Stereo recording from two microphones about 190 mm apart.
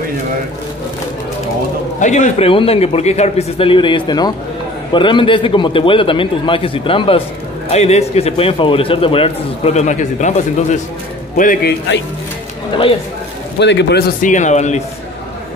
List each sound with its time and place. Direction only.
2.0 s a man's voice: 40° left (ahead or behind)
13.6 s a man's voice: 65° left (ahead or behind)
14.2 s a man's voice: 40° left (ahead or behind)